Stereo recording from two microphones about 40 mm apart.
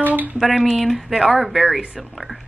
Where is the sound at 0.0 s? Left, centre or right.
Right.